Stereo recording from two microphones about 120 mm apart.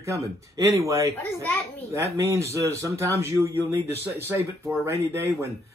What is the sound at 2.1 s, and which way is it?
Speech, 25° right (ahead or behind).